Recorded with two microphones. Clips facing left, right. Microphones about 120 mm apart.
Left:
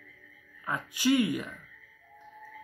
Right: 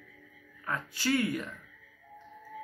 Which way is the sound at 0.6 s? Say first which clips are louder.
Left 4 dB; 15° left (ahead or behind).